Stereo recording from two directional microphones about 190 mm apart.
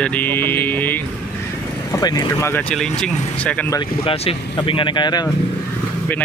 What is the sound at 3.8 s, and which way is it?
Speech, 30° left (ahead or behind).